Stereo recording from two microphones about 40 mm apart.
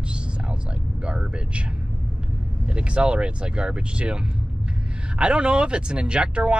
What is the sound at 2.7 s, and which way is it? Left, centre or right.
Speech, right.